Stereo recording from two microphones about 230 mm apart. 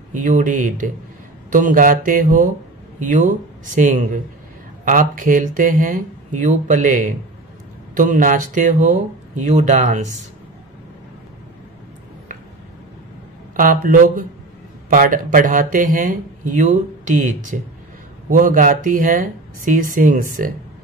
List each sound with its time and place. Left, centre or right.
0.1 s speech: right
13.6 s speech: right